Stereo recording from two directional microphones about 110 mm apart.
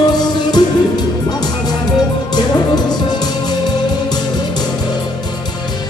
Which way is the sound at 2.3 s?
40° left (ahead or behind).